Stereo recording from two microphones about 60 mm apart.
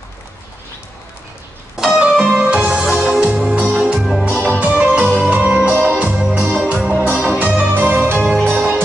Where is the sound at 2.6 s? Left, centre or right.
Centre.